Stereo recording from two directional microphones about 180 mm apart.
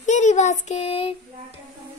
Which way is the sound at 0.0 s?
40° left (ahead or behind).